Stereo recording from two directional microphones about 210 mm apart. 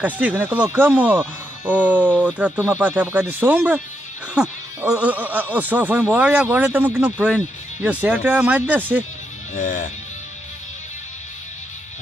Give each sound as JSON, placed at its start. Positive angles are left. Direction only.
{"t": 0.0, "sound": "speech", "side_deg": -10}
{"t": 9.6, "sound": "speech", "side_deg": 40}